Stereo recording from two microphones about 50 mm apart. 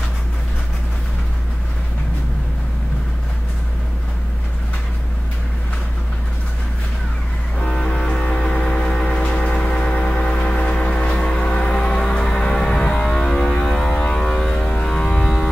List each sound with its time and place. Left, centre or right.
7.5 s music: centre